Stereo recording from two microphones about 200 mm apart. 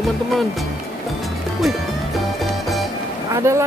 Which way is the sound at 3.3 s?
15° right (ahead or behind).